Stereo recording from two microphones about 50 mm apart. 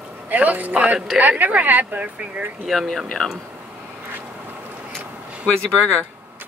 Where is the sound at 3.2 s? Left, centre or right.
Centre.